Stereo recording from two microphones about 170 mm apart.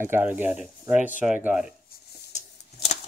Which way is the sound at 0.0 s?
10° right (ahead or behind).